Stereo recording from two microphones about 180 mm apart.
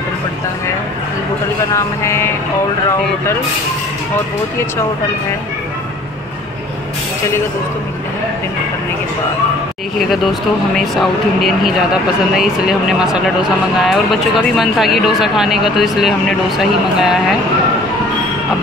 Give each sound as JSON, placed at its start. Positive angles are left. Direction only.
{"t": 1.7, "sound": "speech", "side_deg": 15}
{"t": 9.9, "sound": "speech", "side_deg": 0}